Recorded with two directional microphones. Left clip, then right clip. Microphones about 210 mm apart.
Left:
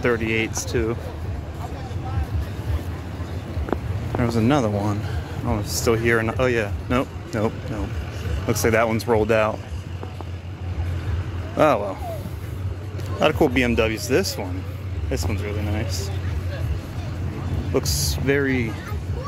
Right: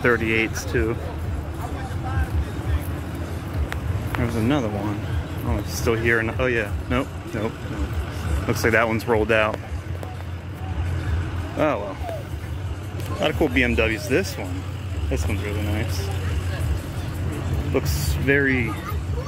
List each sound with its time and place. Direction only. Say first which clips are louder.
0.0 s speech: right 2 dB; 10° left (ahead or behind)
4.2 s speech: left 3 dB; 35° left (ahead or behind)
8.5 s speech: even; 20° left (ahead or behind)
11.5 s speech: left 5 dB; 30° left (ahead or behind)
13.2 s speech: left 2 dB; 30° left (ahead or behind)
15.7 s speech: even; 15° left (ahead or behind)
17.7 s speech: left 3 dB; 20° left (ahead or behind)